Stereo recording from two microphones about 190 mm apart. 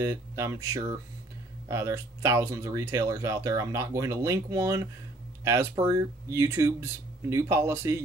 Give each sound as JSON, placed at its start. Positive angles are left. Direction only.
{"t": 0.0, "sound": "speech", "side_deg": -15}